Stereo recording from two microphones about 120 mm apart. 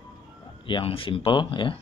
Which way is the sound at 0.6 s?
45° left (ahead or behind).